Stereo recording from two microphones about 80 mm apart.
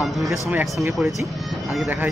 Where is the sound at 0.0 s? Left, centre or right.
Centre.